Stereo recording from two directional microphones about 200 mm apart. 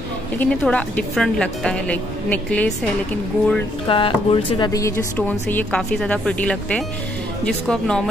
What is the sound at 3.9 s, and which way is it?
A woman's voice, 25° left (ahead or behind).